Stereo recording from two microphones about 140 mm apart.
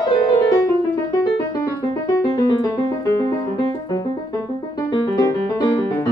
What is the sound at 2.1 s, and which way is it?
Music, 25° left (ahead or behind).